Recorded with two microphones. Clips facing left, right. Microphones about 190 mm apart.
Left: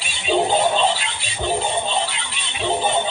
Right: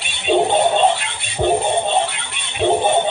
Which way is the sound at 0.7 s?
55° right (ahead or behind).